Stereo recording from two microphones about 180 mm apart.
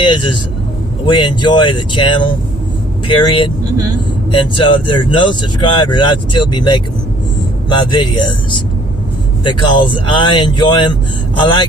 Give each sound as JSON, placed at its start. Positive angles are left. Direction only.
{"t": 0.0, "sound": "speech", "side_deg": 25}